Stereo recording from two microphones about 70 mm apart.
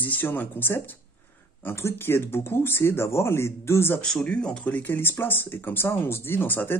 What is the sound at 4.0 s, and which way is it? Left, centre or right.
Speech, centre.